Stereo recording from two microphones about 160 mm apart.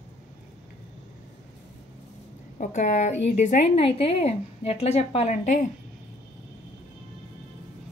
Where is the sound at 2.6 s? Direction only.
55° left (ahead or behind).